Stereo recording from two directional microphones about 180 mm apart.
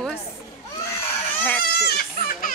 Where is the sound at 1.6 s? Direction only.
60° left (ahead or behind).